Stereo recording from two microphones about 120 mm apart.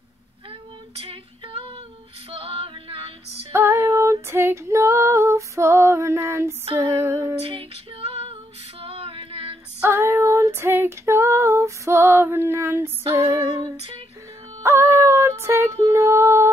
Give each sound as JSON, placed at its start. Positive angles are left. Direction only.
{"t": 0.5, "sound": "female singing", "side_deg": -50}
{"t": 3.5, "sound": "female singing", "side_deg": -20}
{"t": 6.8, "sound": "music", "side_deg": -25}
{"t": 7.3, "sound": "female singing", "side_deg": -50}
{"t": 9.8, "sound": "female singing", "side_deg": -20}
{"t": 14.6, "sound": "music", "side_deg": -20}